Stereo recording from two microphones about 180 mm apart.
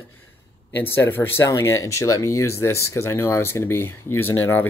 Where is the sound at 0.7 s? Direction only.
10° left (ahead or behind).